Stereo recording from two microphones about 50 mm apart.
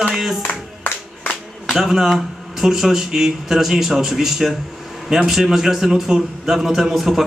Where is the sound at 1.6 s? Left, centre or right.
Centre.